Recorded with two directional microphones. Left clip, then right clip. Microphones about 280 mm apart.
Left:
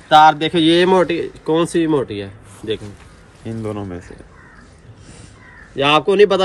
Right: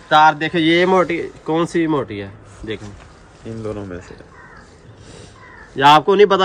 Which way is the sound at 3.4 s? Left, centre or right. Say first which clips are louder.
Left 1 dB; centre.